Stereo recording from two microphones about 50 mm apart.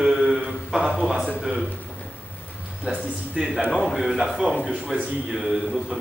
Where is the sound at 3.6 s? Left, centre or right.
Centre.